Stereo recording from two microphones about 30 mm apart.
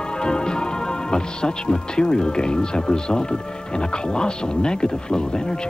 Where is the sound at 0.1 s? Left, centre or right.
Left.